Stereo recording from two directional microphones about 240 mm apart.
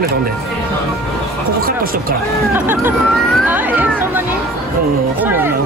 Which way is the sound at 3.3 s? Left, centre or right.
Centre.